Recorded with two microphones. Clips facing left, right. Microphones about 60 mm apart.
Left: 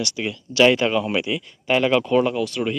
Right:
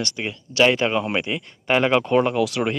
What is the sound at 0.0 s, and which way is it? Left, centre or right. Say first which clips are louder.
Speech: left 1 dB; right.